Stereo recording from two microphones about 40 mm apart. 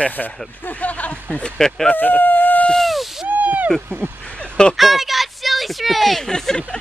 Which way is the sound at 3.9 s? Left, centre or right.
Right.